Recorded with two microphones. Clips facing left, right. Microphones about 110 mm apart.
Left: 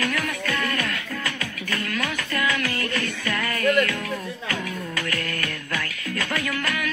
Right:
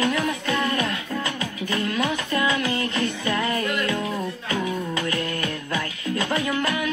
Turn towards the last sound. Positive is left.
turn(degrees=-20)  # may be behind; listen again after turning